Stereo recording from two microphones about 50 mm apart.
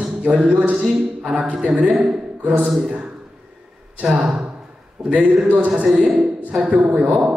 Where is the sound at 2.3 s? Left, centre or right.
Right.